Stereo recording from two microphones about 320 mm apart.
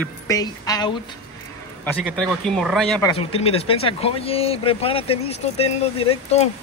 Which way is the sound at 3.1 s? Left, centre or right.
Centre.